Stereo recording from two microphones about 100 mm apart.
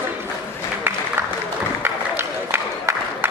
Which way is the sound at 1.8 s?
20° right (ahead or behind).